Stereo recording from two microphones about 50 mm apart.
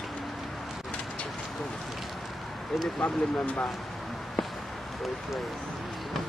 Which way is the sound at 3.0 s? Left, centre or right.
Left.